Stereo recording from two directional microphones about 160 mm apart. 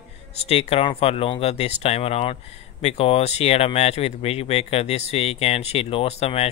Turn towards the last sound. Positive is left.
turn(degrees=40)  # may be behind; listen again after turning